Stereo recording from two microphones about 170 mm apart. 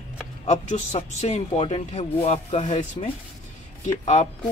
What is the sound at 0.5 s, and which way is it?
A man's voice, 40° left (ahead or behind).